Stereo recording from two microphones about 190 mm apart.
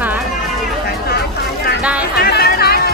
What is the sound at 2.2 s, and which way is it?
Music, 55° left (ahead or behind).